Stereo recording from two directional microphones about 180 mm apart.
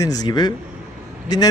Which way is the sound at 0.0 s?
20° left (ahead or behind).